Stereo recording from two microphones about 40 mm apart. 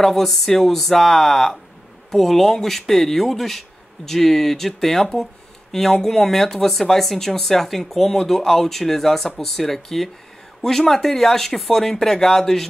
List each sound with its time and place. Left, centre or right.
0.0 s speech: centre